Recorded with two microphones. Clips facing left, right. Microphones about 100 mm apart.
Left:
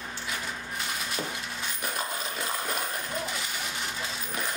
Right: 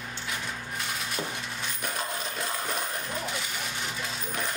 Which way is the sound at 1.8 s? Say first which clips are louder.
Even; centre (ahead or behind).